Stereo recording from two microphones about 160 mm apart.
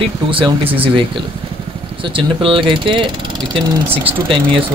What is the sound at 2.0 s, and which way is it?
Speech, 35° right (ahead or behind).